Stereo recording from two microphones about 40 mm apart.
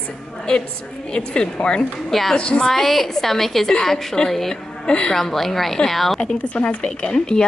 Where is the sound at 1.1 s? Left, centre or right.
Left.